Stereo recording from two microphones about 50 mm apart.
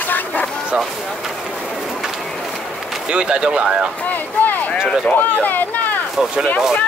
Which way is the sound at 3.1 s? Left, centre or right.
Centre.